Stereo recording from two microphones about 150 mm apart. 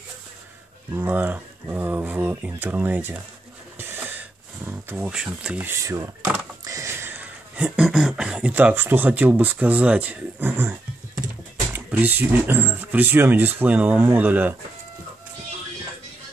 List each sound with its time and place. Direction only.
0.9 s speech: 15° right (ahead or behind)
3.7 s a sound: 15° right (ahead or behind)
11.7 s speech: 15° right (ahead or behind)